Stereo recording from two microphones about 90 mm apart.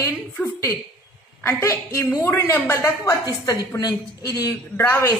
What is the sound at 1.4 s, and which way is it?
A man's voice, 30° left (ahead or behind).